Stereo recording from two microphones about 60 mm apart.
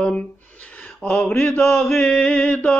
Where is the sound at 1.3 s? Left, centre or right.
Left.